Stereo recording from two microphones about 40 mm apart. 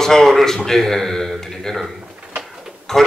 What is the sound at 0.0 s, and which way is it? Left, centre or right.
A man's voice, centre.